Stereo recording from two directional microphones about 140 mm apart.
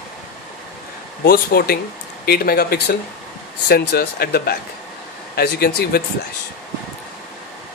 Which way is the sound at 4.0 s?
90° left.